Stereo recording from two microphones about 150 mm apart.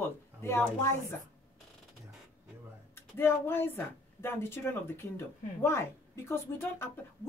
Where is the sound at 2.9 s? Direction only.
15° left (ahead or behind).